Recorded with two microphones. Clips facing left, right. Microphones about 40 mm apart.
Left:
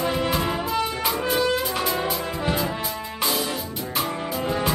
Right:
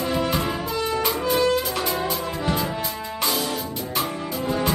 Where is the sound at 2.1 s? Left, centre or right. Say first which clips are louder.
Even; centre.